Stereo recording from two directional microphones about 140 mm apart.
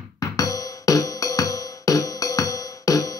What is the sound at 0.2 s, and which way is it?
Music, 25° left (ahead or behind).